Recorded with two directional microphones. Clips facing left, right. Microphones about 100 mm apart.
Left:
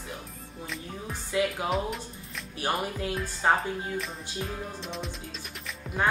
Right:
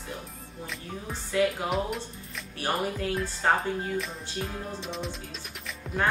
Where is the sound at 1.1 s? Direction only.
15° left (ahead or behind).